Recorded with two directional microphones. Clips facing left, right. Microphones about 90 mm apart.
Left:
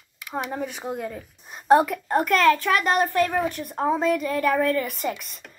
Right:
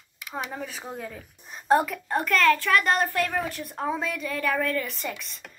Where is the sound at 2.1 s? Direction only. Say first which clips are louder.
Left 4 dB; 15° left (ahead or behind).